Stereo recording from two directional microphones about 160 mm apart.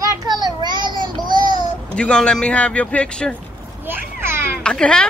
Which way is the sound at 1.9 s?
5° left (ahead or behind).